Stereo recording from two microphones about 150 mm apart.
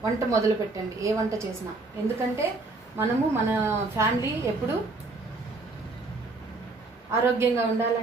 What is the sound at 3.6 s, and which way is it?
Speech, 15° right (ahead or behind).